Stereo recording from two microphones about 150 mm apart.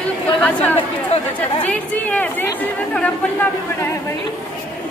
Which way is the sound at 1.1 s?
45° left (ahead or behind).